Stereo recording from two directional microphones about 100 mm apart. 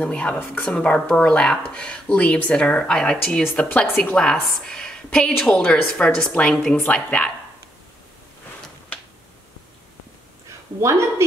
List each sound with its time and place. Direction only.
0.0 s a woman's voice: 10° left (ahead or behind)
10.8 s speech: 30° right (ahead or behind)